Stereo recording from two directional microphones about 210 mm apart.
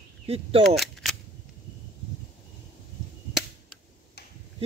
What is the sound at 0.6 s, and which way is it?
Cap gun, centre (ahead or behind).